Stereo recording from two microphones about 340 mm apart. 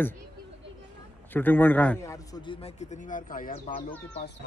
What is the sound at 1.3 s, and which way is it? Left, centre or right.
A man's voice, centre.